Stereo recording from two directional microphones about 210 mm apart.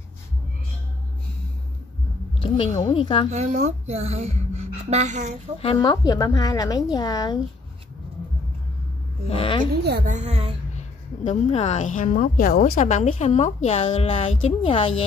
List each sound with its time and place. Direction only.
2.9 s speech: 25° left (ahead or behind)
3.3 s speech: 35° right (ahead or behind)
5.6 s a woman's voice: 25° left (ahead or behind)
9.3 s speech: 25° left (ahead or behind)
9.8 s a woman's voice: 50° right (ahead or behind)
10.1 s a woman's voice: 30° right (ahead or behind)
10.8 s a woman's voice: 35° left (ahead or behind)